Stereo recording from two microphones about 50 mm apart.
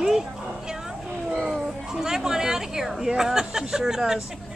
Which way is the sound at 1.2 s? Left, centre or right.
Centre.